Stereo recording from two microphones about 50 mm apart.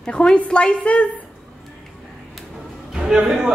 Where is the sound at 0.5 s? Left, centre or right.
Left.